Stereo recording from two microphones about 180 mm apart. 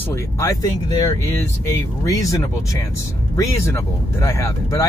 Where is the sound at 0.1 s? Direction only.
20° left (ahead or behind).